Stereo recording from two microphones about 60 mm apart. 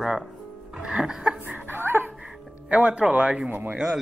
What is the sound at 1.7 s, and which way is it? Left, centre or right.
Dog, right.